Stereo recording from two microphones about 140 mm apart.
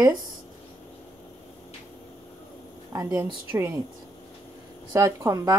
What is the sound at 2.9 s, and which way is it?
Speech, 25° right (ahead or behind).